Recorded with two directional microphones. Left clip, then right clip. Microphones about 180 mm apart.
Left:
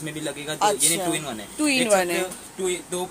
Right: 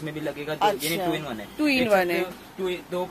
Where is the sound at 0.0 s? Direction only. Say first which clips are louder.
Even; centre (ahead or behind).